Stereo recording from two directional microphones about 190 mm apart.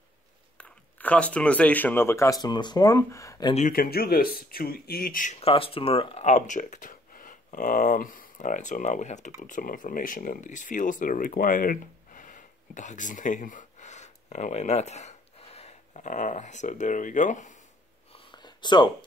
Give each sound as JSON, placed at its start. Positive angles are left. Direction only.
{"t": 0.6, "sound": "speech", "side_deg": 5}
{"t": 3.5, "sound": "speech", "side_deg": 45}
{"t": 18.1, "sound": "a sound", "side_deg": 25}